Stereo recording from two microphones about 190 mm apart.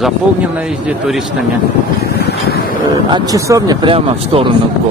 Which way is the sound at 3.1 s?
20° right (ahead or behind).